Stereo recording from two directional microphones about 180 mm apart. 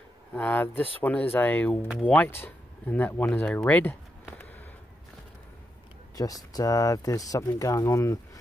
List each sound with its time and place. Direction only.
0.3 s speech: 10° left (ahead or behind)
6.1 s speech: 20° left (ahead or behind)